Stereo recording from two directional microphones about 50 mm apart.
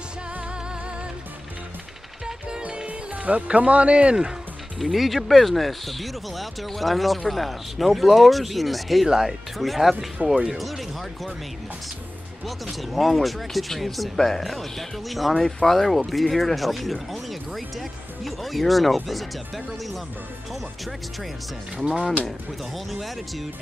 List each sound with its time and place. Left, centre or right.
2.6 s speech: right
4.9 s speech: centre
12.7 s speech: centre
22.8 s speech: centre